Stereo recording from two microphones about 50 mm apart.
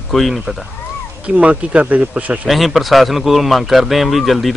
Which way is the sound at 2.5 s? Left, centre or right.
Centre.